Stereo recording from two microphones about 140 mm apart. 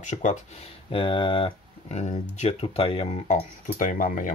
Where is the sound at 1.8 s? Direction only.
55° left (ahead or behind).